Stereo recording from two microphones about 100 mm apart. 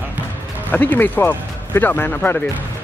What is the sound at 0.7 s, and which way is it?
Speech, 20° left (ahead or behind).